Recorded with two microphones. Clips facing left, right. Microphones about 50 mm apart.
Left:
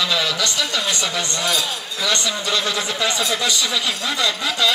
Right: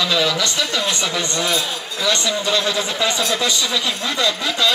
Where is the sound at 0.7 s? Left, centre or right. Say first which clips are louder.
Right 1 dB; right.